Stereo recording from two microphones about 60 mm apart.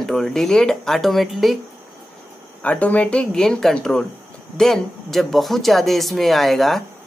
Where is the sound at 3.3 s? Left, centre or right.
Centre.